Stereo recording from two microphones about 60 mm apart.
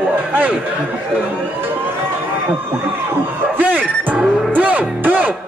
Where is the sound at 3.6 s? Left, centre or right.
Right.